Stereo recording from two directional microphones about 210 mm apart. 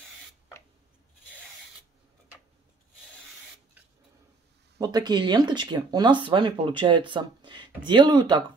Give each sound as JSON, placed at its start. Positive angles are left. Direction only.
{"t": 4.7, "sound": "speech", "side_deg": -20}